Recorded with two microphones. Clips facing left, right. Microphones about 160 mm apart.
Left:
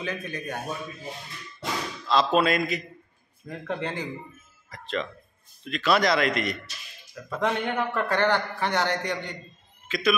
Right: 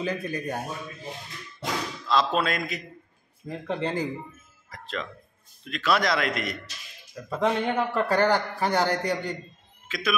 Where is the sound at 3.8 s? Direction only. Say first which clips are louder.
Right 4 dB; 30° right (ahead or behind).